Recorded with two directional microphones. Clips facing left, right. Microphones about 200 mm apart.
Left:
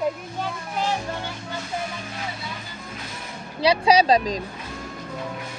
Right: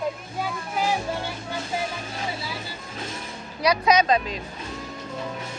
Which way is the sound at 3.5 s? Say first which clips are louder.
Left 2 dB; 30° left (ahead or behind).